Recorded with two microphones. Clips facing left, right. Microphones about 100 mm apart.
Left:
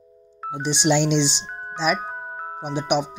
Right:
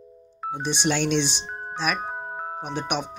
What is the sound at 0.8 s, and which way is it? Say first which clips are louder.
Speech: left 4 dB; 15° left (ahead or behind).